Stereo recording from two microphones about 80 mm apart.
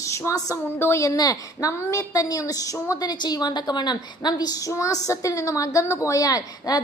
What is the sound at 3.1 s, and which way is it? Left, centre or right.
A woman's voice, left.